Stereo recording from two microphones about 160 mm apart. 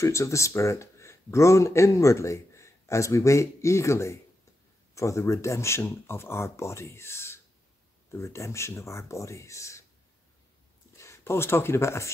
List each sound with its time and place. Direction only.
0.0 s speech: 20° left (ahead or behind)
11.0 s speech: 15° left (ahead or behind)